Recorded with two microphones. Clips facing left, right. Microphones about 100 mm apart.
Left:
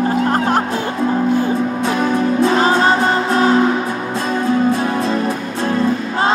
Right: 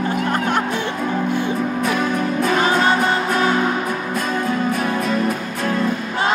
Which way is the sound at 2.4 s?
30° left (ahead or behind).